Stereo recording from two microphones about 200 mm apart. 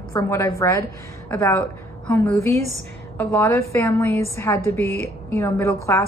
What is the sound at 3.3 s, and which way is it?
Speech, 15° left (ahead or behind).